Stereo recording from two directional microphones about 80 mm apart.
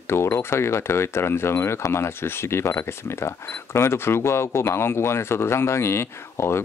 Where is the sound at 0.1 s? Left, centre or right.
Left.